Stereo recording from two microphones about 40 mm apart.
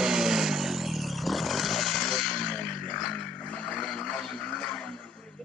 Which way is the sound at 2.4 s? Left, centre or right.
Left.